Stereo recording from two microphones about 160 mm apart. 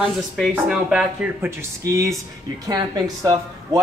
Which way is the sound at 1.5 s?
15° right (ahead or behind).